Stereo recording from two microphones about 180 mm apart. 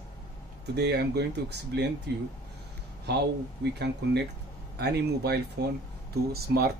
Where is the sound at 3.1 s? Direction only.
65° right (ahead or behind).